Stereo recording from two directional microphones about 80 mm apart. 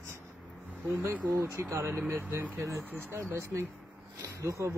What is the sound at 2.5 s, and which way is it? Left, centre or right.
Speech, right.